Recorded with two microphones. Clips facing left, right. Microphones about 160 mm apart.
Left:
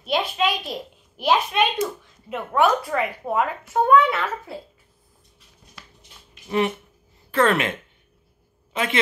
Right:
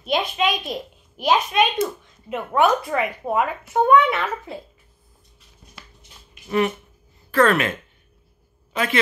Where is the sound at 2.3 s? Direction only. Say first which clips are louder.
Right 1 dB; 10° right (ahead or behind).